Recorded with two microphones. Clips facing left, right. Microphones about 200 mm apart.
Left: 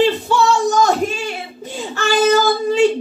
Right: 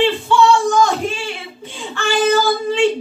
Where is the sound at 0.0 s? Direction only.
40° left (ahead or behind).